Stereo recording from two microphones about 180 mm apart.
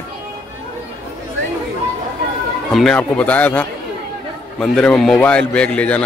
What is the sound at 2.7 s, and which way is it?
A man's voice, centre (ahead or behind).